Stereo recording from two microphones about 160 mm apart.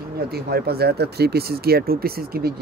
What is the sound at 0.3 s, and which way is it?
Speech, 75° right (ahead or behind).